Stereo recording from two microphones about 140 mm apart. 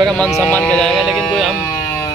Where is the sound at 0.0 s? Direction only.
5° left (ahead or behind).